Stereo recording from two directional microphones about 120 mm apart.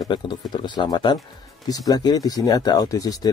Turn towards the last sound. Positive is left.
turn(degrees=30)  # may be behind; listen again after turning